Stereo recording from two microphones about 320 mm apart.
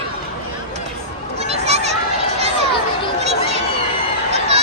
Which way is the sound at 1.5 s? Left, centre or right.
Centre.